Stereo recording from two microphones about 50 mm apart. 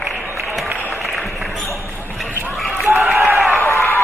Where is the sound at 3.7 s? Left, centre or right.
Left.